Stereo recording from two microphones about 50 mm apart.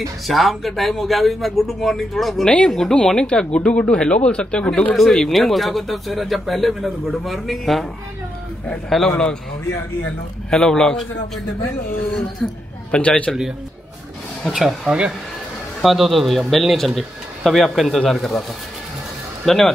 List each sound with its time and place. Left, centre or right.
0.3 s speech: centre
2.7 s a man's voice: centre
4.9 s speech: centre
8.8 s a man's voice: centre
10.5 s a man's voice: centre
12.1 s a man's voice: centre
12.9 s speech: left
14.5 s speech: centre
19.4 s speech: centre